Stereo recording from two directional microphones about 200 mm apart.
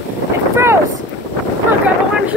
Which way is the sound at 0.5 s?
15° right (ahead or behind).